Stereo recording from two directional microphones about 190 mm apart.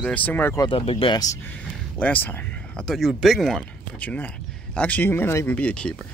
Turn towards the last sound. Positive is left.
turn(degrees=5)  # may be behind; listen again after turning